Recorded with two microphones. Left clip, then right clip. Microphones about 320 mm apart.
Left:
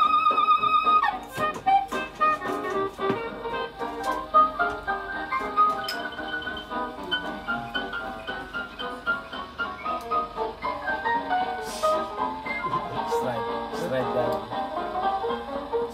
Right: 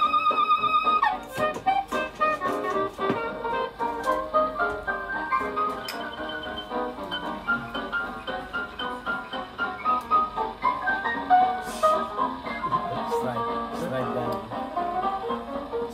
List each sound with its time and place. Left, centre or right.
0.0 s music: centre
9.6 s music: centre